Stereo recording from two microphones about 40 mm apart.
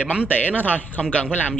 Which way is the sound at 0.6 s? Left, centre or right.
Left.